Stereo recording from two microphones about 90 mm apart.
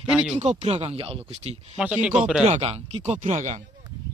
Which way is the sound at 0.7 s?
90° right.